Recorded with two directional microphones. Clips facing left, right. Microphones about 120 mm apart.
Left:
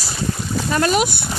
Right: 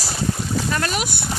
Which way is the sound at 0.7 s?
20° left (ahead or behind).